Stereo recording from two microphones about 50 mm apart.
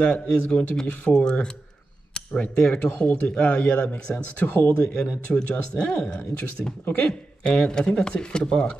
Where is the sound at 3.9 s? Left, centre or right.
Left.